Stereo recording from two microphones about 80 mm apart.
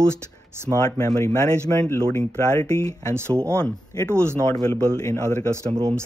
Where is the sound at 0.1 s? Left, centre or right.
Right.